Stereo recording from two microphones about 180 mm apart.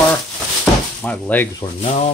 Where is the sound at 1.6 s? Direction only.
35° left (ahead or behind).